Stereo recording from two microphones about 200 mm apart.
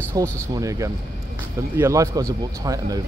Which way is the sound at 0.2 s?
15° right (ahead or behind).